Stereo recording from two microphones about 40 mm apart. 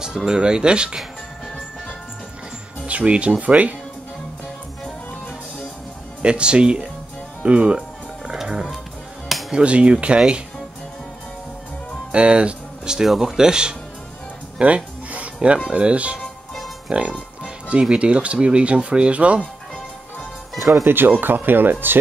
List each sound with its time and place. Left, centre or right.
0.0 s speech: centre
2.9 s speech: right
6.2 s speech: right
9.6 s speech: right
12.1 s a sound: right
12.9 s speech: centre; by 19.4 s right
20.8 s speech: right